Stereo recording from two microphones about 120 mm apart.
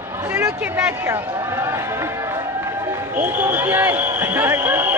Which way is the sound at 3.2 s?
15° right (ahead or behind).